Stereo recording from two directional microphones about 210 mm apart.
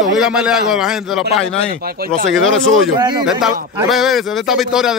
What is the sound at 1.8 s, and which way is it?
Speech, 45° right (ahead or behind).